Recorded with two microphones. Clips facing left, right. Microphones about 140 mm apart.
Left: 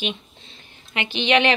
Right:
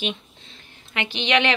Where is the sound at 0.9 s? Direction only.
30° left (ahead or behind).